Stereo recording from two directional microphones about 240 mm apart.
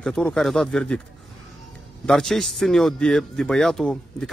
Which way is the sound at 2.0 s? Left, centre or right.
Centre.